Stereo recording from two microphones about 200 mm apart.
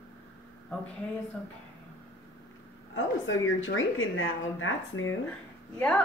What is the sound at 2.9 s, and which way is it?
A woman's voice, 75° left (ahead or behind).